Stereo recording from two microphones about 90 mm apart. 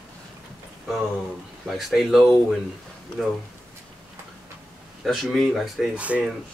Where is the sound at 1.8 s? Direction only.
Centre (ahead or behind).